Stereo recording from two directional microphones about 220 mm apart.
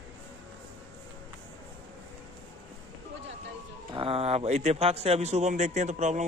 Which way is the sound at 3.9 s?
25° right (ahead or behind).